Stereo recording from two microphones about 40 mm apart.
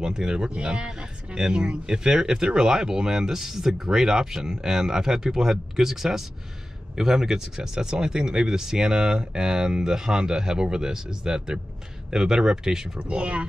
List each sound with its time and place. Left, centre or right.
0.0 s speech: centre
13.0 s speech: right